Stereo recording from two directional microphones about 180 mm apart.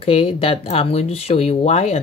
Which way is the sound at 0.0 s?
30° left (ahead or behind).